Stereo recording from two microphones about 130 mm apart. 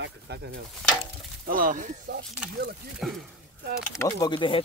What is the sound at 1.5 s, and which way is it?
Speech, 90° right.